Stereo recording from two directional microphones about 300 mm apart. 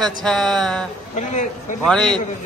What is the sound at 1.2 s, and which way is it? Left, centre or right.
Speech, left.